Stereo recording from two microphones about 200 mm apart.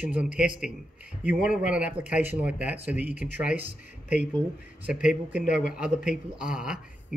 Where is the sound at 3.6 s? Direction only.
40° left (ahead or behind).